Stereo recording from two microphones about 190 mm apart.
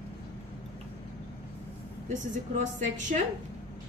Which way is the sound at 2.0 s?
40° right (ahead or behind).